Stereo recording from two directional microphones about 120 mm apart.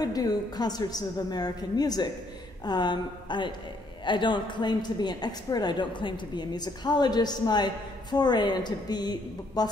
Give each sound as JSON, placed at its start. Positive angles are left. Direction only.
{"t": 0.0, "sound": "a woman's voice", "side_deg": 30}